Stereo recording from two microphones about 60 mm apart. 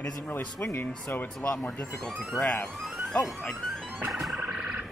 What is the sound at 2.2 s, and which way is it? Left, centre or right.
Speech, centre.